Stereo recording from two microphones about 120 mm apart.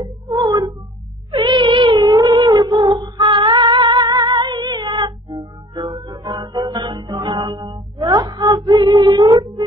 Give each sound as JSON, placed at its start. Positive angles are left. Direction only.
{"t": 0.0, "sound": "music", "side_deg": -30}
{"t": 1.3, "sound": "cat", "side_deg": -40}